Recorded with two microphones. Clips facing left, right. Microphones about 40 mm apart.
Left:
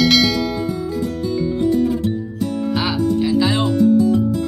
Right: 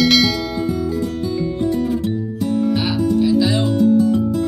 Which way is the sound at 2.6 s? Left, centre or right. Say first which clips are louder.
Even; centre.